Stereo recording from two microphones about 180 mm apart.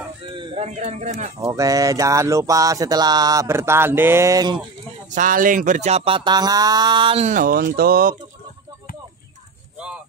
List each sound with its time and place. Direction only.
0.4 s speech: 40° right (ahead or behind)
1.4 s a sound: 20° right (ahead or behind)
5.1 s speech: 50° right (ahead or behind)